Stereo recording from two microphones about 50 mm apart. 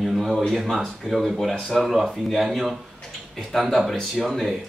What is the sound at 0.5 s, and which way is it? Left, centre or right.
A man's voice, centre.